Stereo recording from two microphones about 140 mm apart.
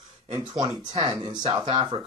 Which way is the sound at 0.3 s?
25° right (ahead or behind).